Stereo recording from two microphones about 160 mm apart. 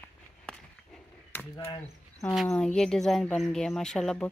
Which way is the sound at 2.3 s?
Centre (ahead or behind).